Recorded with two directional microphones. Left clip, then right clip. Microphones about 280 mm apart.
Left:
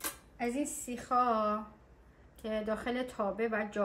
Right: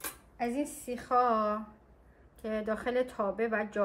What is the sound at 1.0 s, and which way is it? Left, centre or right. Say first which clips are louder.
A woman's voice: right 2 dB; centre.